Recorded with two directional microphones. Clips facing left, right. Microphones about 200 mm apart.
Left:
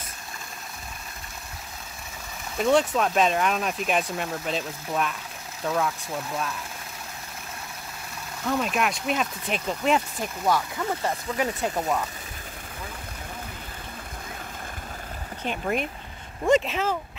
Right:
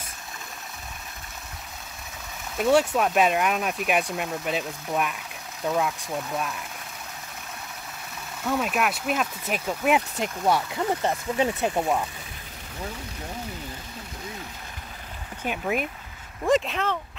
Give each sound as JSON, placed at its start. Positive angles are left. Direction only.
{"t": 2.5, "sound": "speech", "side_deg": -5}
{"t": 8.5, "sound": "speech", "side_deg": -5}
{"t": 10.1, "sound": "speech", "side_deg": -20}
{"t": 15.4, "sound": "speech", "side_deg": -5}